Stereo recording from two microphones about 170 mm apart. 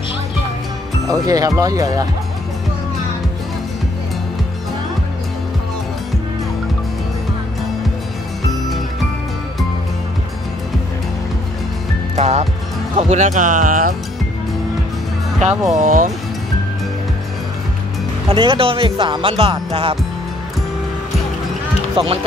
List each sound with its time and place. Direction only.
1.0 s speech: 20° right (ahead or behind)
8.5 s music: centre (ahead or behind)
12.2 s speech: 40° right (ahead or behind)
15.8 s speech: 50° right (ahead or behind)
18.3 s speech: 30° right (ahead or behind)
21.9 s speech: 35° right (ahead or behind)